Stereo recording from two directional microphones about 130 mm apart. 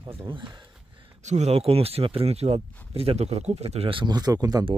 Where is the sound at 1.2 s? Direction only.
60° right (ahead or behind); by 4.6 s 30° right (ahead or behind).